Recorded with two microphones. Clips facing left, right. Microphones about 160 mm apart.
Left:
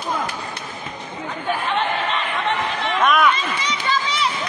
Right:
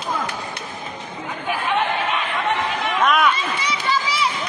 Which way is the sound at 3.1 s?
10° right (ahead or behind).